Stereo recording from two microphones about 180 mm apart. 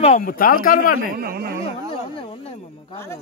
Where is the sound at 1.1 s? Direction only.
55° right (ahead or behind).